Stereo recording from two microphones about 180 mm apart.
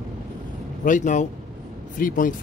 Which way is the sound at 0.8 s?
45° left (ahead or behind).